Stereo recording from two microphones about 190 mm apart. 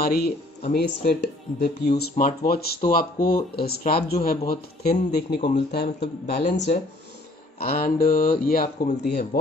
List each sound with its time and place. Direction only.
0.0 s speech: 55° left (ahead or behind)
6.4 s speech: 40° left (ahead or behind)
7.5 s a sound: 50° left (ahead or behind)
8.0 s speech: 50° left (ahead or behind)